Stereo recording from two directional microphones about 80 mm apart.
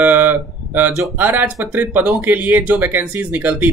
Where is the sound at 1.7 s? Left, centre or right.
Right.